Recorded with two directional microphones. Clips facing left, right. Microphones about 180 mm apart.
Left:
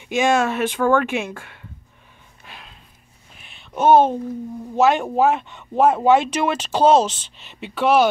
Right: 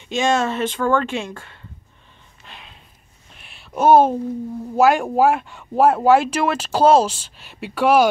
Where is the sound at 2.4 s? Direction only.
5° left (ahead or behind).